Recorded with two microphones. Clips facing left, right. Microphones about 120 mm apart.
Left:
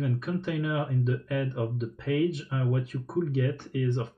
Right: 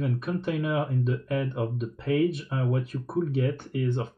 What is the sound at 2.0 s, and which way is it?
Speech, 50° right (ahead or behind).